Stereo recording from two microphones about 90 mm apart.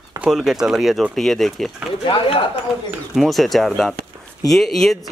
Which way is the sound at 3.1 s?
Centre (ahead or behind).